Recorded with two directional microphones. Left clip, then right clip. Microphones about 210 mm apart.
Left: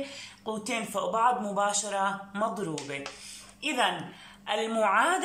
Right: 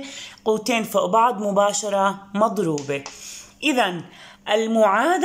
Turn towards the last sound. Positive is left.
turn(degrees=-35)  # may be behind; listen again after turning